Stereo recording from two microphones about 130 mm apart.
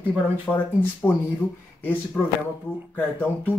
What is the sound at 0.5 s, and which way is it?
Speech, 15° left (ahead or behind).